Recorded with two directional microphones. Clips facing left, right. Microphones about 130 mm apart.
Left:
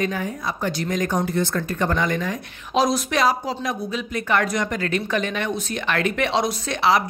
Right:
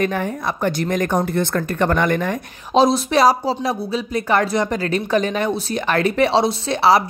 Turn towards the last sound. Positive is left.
turn(degrees=-35)  # may be behind; listen again after turning